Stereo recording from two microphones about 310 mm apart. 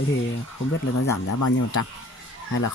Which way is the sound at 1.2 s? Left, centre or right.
Left.